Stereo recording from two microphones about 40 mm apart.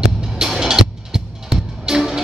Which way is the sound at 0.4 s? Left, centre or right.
Centre.